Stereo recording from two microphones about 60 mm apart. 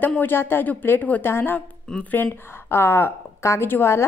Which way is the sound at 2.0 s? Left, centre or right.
Left.